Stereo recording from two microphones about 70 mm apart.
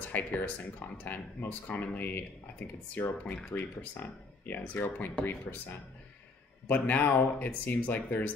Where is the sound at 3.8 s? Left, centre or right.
Left.